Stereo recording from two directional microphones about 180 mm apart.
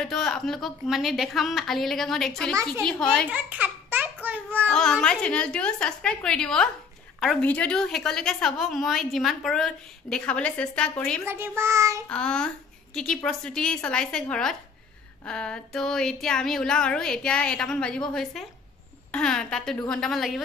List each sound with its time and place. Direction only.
0.0 s a woman's voice: 5° left (ahead or behind)
3.3 s a sound: 10° right (ahead or behind)
4.6 s a woman's voice: 5° left (ahead or behind)
11.2 s a child's voice: 15° right (ahead or behind)
12.1 s a woman's voice: 5° left (ahead or behind)